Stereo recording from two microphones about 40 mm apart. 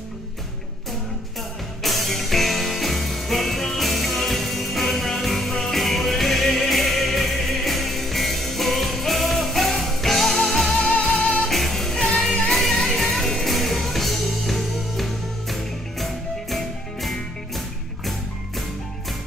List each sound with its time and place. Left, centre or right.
1.8 s music: centre
10.8 s music: left
11.4 s music: centre